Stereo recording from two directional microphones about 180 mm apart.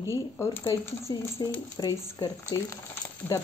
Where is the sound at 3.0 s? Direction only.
15° left (ahead or behind).